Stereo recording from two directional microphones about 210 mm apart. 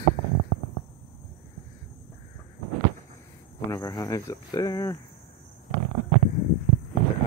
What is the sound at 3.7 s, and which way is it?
Speech, 15° left (ahead or behind).